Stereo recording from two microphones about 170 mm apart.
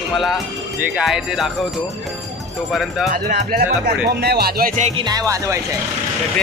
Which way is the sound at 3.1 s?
55° right (ahead or behind).